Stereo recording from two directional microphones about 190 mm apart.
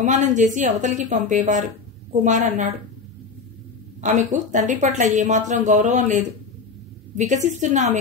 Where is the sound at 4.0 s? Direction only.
40° right (ahead or behind).